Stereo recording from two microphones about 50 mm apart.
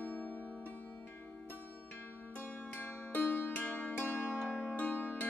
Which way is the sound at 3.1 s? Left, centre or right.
Left.